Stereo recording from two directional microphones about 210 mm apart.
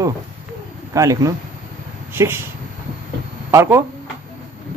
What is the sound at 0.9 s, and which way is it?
A man's voice, 15° right (ahead or behind).